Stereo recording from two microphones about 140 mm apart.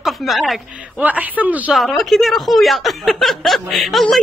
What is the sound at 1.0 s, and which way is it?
Speech, 10° right (ahead or behind).